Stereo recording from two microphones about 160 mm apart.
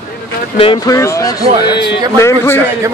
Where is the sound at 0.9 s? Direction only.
20° left (ahead or behind).